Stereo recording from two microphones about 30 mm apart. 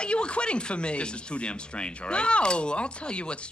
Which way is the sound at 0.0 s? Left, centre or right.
Left.